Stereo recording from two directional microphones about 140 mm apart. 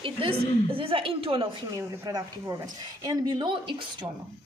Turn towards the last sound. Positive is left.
turn(degrees=-35)  # may be behind; listen again after turning